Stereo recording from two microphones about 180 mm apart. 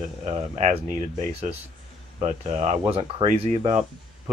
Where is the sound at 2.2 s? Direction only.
35° right (ahead or behind).